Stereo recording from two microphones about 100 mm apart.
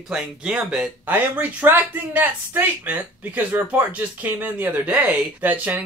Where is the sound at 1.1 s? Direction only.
20° right (ahead or behind).